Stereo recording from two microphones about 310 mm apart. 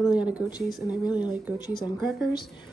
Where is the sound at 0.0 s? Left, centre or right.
Centre.